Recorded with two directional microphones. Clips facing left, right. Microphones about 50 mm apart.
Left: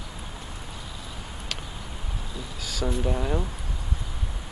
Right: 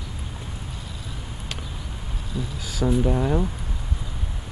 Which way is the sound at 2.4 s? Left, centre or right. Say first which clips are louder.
Right 5 dB; centre.